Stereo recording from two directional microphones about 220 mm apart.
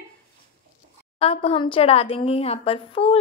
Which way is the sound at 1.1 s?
25° left (ahead or behind).